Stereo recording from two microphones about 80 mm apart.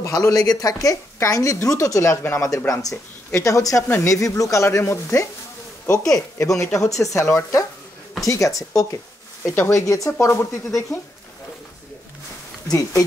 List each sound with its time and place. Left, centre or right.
0.0 s speech: left
5.9 s speech: left
6.3 s speech: left
12.6 s speech: left